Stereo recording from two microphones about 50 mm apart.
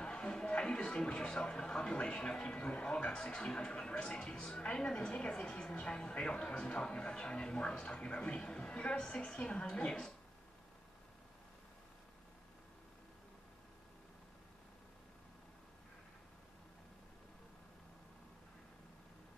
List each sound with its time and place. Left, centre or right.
0.0 s music: centre
0.6 s speech: centre